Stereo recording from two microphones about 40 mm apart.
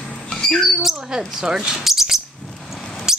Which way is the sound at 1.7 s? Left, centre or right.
Centre.